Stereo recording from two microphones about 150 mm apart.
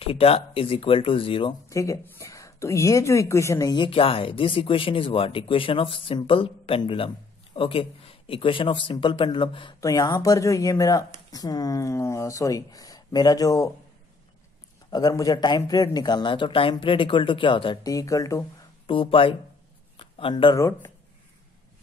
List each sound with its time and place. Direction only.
0.0 s speech: 40° left (ahead or behind)
1.7 s speech: 20° left (ahead or behind)
3.7 s speech: 35° left (ahead or behind)
9.8 s speech: 25° left (ahead or behind)
14.9 s speech: 25° left (ahead or behind)
18.9 s speech: 35° left (ahead or behind)
20.0 s a sound: 35° left (ahead or behind)
20.5 s speech: 20° left (ahead or behind)